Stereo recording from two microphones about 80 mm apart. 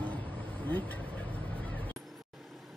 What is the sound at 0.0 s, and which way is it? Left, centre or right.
Vehicle, left.